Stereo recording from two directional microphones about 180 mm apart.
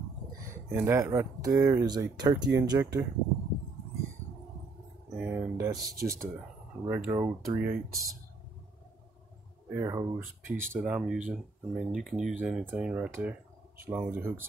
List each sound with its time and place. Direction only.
0.4 s speech: 15° right (ahead or behind)
5.1 s speech: 10° right (ahead or behind)
9.8 s speech: 15° right (ahead or behind)